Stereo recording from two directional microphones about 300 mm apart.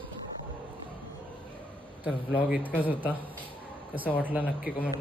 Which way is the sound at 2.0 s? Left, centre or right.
Centre.